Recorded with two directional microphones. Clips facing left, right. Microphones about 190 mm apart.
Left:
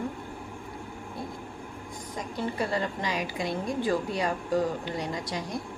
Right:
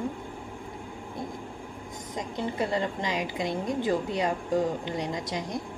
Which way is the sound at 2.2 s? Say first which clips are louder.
Right 1 dB; 20° right (ahead or behind).